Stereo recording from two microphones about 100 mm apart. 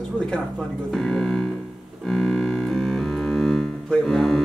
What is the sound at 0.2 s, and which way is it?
Speech, 10° left (ahead or behind).